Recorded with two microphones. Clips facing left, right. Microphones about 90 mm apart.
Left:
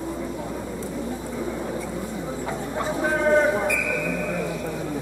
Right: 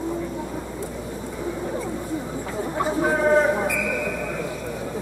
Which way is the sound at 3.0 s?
5° right (ahead or behind).